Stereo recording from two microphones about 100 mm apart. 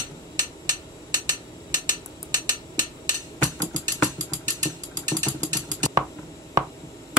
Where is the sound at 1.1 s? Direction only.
40° right (ahead or behind).